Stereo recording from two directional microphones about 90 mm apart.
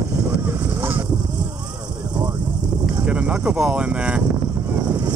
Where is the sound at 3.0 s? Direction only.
15° right (ahead or behind).